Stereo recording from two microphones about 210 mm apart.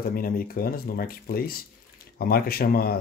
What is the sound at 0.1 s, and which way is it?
Speech, 45° left (ahead or behind).